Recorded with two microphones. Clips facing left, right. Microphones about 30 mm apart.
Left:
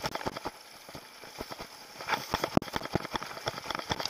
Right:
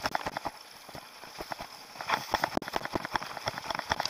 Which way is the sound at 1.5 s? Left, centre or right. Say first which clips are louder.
Right 3 dB; right.